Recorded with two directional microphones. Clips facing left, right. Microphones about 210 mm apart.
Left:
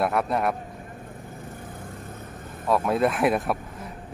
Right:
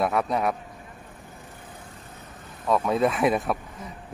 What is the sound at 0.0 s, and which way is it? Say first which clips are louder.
Speech: even; centre (ahead or behind).